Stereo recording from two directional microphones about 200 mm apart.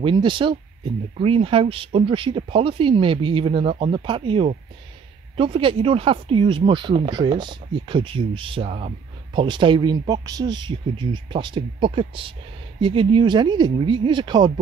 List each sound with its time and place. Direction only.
0.0 s speech: 25° right (ahead or behind)